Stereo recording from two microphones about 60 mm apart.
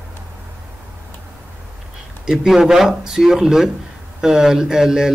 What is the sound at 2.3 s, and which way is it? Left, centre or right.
A man's voice, centre.